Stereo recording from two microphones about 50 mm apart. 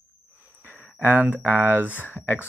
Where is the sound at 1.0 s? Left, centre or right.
Right.